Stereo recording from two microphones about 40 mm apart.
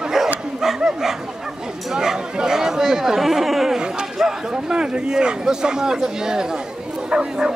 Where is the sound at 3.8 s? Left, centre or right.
Centre.